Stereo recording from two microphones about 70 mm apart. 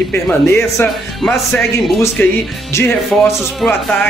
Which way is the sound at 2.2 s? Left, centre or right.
Left.